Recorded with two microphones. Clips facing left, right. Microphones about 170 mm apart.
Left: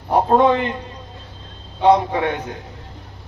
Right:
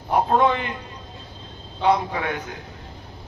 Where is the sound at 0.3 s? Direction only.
35° left (ahead or behind).